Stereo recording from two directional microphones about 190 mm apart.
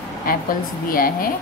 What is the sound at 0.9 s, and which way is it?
Speech, 50° left (ahead or behind).